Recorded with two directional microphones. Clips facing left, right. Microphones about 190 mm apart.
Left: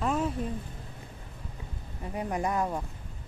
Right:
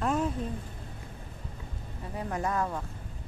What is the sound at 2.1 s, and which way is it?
Speech, 15° left (ahead or behind).